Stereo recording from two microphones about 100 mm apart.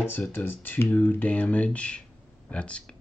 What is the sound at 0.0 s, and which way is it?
Speech, 20° left (ahead or behind).